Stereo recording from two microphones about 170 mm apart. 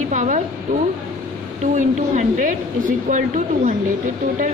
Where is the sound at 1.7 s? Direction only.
45° right (ahead or behind).